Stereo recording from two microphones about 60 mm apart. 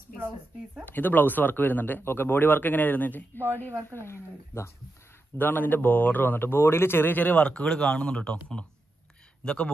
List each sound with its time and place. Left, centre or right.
0.8 s speech: left
3.9 s speech: left
5.4 s a man's voice: left; by 9.7 s centre